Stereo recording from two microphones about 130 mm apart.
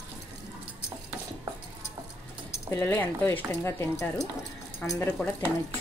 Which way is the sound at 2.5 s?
15° left (ahead or behind).